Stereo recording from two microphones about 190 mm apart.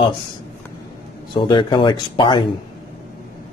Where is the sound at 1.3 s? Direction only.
25° left (ahead or behind).